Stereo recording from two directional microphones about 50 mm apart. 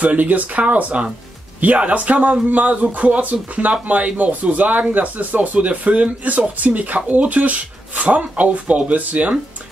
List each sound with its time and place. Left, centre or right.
0.0 s speech: right